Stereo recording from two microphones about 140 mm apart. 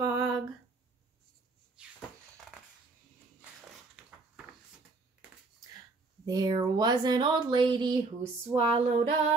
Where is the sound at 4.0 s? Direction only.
5° right (ahead or behind).